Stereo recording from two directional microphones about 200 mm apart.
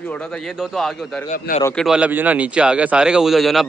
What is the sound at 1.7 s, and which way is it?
A man's voice, centre (ahead or behind).